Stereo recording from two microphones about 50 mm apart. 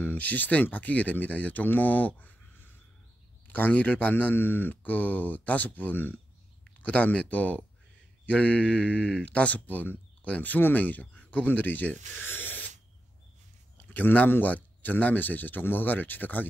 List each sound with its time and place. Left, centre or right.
0.0 s speech: left
14.3 s speech: left